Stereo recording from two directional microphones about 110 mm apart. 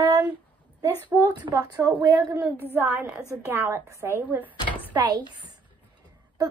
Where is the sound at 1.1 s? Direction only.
20° right (ahead or behind).